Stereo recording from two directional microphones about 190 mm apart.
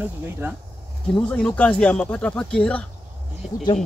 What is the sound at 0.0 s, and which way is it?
Speech, 10° right (ahead or behind).